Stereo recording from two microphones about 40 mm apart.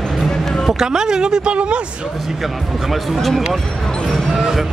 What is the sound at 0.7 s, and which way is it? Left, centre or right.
Speech, centre.